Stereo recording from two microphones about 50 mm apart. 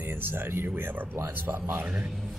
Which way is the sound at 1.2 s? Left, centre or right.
Right.